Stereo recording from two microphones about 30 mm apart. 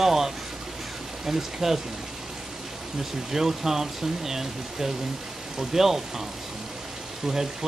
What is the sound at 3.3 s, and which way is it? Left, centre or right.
Speech, centre.